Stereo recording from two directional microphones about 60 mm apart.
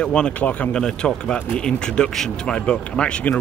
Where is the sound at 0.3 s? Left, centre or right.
Left.